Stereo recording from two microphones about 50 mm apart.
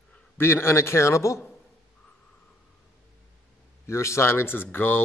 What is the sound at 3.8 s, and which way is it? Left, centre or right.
A man's voice, left.